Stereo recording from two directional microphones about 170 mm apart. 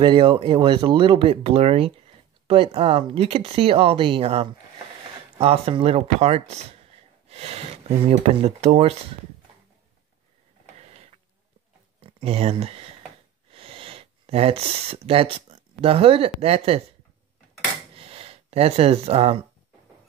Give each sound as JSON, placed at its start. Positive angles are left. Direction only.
{"t": 0.0, "sound": "speech", "side_deg": -30}
{"t": 10.8, "sound": "printer", "side_deg": -40}
{"t": 12.0, "sound": "speech", "side_deg": -35}
{"t": 17.9, "sound": "gasp", "side_deg": -35}